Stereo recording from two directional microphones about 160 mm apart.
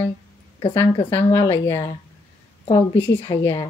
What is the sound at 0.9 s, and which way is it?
Speech, 35° left (ahead or behind).